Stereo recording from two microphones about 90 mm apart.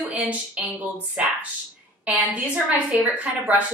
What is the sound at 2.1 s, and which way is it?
A woman's voice, 15° right (ahead or behind).